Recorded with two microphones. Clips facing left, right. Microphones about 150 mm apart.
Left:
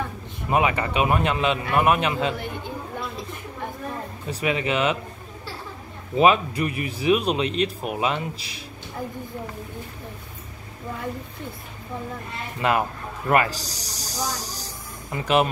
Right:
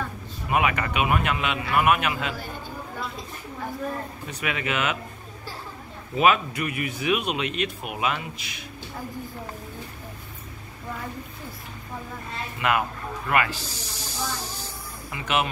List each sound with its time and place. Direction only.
0.5 s a man's voice: 30° left (ahead or behind)
4.3 s speech: 30° left (ahead or behind)
6.1 s speech: 30° left (ahead or behind)
12.5 s speech: 35° left (ahead or behind)